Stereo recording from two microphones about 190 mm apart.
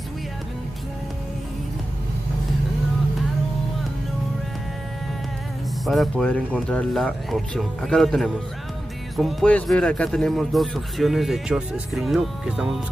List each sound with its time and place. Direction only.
5.9 s speech: centre (ahead or behind)